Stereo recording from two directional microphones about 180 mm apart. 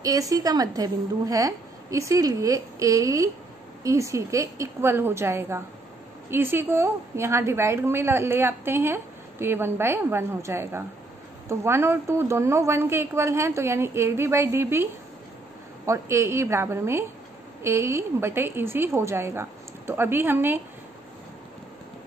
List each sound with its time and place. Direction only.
0.0 s a woman's voice: 20° right (ahead or behind)